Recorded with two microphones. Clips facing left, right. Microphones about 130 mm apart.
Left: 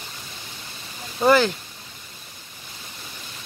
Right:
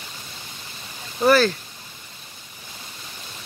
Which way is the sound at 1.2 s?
20° left (ahead or behind).